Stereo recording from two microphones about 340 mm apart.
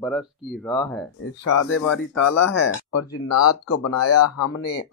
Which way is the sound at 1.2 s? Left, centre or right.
Left.